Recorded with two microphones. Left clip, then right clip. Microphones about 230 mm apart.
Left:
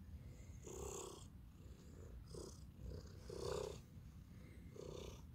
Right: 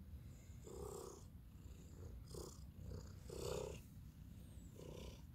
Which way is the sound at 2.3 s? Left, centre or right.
Centre.